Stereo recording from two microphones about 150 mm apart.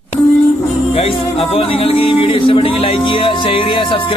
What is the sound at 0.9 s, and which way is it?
Music, 40° left (ahead or behind).